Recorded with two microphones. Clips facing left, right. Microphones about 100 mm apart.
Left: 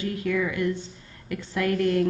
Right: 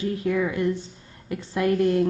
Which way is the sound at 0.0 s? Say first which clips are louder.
Right 2 dB; 25° right (ahead or behind).